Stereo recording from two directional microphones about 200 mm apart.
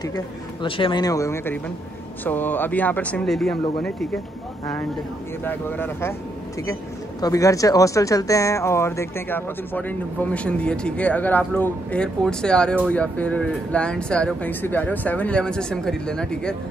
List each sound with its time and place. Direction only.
0.0 s speech: 20° left (ahead or behind); by 4.2 s 5° left (ahead or behind)
5.4 s speech: 10° left (ahead or behind)